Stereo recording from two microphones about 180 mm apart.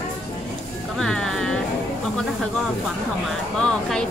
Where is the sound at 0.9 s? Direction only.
5° left (ahead or behind).